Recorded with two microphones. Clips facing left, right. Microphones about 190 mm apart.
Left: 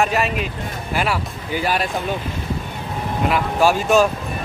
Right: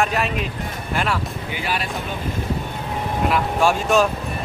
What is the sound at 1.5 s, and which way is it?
Speech, 40° left (ahead or behind).